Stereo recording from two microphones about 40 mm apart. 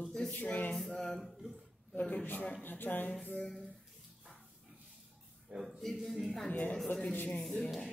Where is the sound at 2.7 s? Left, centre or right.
Left.